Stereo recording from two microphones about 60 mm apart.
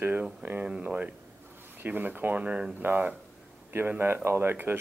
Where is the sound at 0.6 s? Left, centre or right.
Right.